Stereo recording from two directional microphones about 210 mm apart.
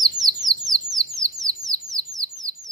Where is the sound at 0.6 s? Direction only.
15° right (ahead or behind).